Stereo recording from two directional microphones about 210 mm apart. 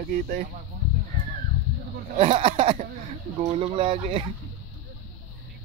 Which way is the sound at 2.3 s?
25° right (ahead or behind).